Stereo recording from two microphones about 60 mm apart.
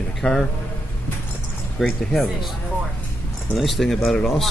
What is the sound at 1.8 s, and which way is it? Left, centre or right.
Speech, centre.